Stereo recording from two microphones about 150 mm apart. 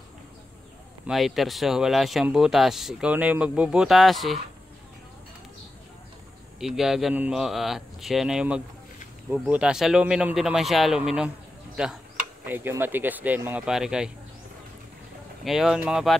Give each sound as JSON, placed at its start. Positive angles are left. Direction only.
{"t": 1.0, "sound": "speech", "side_deg": 0}
{"t": 6.6, "sound": "speech", "side_deg": -5}
{"t": 15.4, "sound": "speech", "side_deg": 0}